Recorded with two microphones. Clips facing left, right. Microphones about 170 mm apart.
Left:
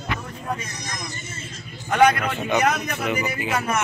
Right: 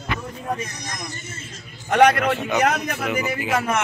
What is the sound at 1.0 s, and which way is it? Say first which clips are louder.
Speech: even; 55° right (ahead or behind).